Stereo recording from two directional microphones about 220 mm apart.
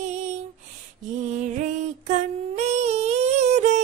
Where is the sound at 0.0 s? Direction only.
30° right (ahead or behind).